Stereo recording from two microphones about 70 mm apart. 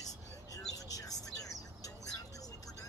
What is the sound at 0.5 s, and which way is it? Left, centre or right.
Vehicle, left.